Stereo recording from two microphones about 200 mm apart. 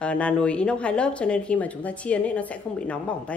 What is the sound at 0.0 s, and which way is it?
A woman's voice, 5° left (ahead or behind).